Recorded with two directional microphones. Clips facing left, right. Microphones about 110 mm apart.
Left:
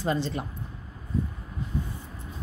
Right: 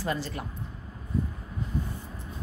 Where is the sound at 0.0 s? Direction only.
25° left (ahead or behind).